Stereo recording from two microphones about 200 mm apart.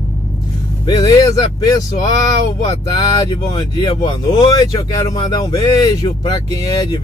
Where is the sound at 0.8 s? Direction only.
20° left (ahead or behind).